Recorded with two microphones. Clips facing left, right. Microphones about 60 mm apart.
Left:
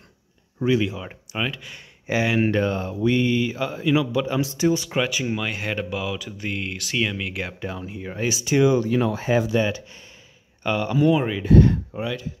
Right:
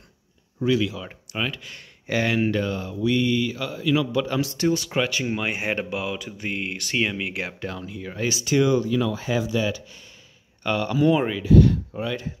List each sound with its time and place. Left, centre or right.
0.6 s speech: left
1.3 s speech: centre
2.4 s speech: left
4.0 s speech: centre
5.3 s speech: centre
5.9 s speech: centre
7.8 s speech: left
8.8 s speech: left
10.6 s speech: centre
11.1 s speech: centre
11.9 s speech: centre